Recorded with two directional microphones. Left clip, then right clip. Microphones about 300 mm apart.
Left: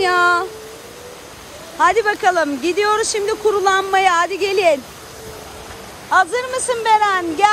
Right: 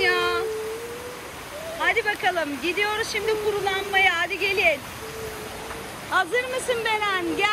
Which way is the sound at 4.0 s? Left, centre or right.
Centre.